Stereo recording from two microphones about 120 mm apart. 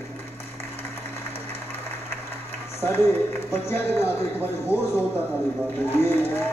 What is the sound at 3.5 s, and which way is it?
Music, 20° left (ahead or behind).